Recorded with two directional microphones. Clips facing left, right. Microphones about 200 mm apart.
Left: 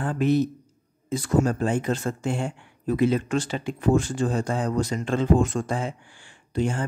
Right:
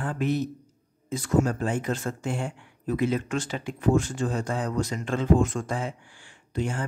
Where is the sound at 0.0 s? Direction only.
30° left (ahead or behind).